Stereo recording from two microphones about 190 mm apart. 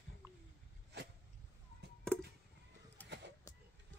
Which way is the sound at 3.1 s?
65° right (ahead or behind).